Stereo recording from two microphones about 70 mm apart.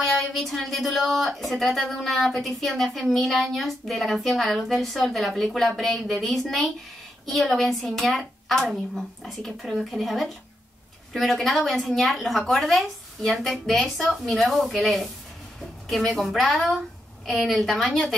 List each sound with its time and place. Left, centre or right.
0.0 s a woman's voice: centre
16.2 s a woman's voice: centre